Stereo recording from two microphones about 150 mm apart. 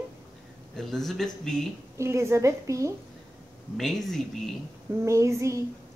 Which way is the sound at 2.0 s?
20° right (ahead or behind).